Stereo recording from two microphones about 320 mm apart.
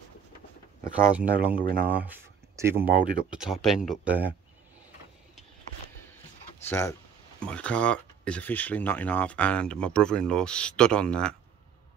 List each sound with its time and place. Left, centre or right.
1.1 s speech: centre
1.5 s speech: right
2.0 s a sound: centre
3.1 s speech: centre
6.6 s speech: centre